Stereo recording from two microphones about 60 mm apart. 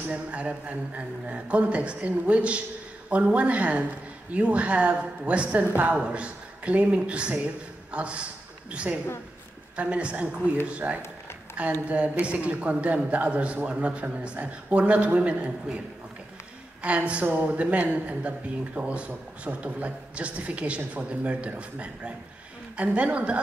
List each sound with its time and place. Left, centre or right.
0.1 s a man's voice: right
16.8 s a man's voice: right